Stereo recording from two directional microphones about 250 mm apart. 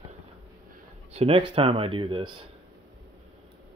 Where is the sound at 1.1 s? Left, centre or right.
Right.